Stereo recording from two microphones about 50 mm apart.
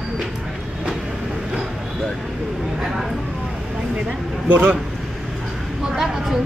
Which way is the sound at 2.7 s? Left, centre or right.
Centre.